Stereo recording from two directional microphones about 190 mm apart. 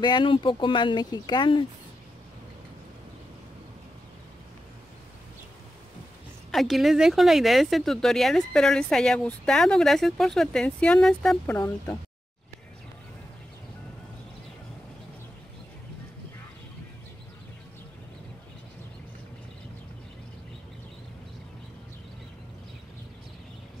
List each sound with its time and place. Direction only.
0.0 s speech: 25° left (ahead or behind)
6.5 s speech: centre (ahead or behind)